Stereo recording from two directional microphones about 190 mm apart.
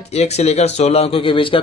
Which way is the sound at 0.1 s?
35° left (ahead or behind).